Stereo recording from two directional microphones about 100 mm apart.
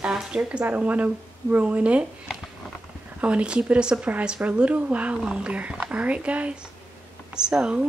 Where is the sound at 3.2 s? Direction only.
10° right (ahead or behind).